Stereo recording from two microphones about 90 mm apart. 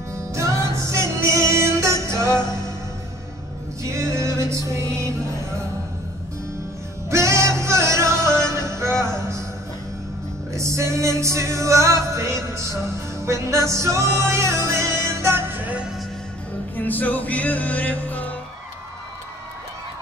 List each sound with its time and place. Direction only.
0.1 s music: 30° right (ahead or behind)
2.2 s music: 50° left (ahead or behind)
3.9 s music: 35° right (ahead or behind)
7.1 s music: 30° right (ahead or behind)
8.5 s a sound: 30° right (ahead or behind)
10.5 s music: 35° right (ahead or behind)
16.7 s music: 20° left (ahead or behind)